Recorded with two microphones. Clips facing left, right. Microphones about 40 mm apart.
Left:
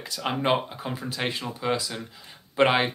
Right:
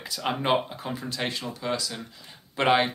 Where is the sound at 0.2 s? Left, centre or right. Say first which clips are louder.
Even; centre.